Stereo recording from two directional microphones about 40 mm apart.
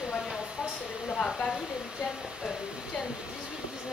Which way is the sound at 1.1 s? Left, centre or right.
Left.